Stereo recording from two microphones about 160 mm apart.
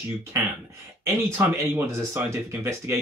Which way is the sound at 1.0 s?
15° right (ahead or behind).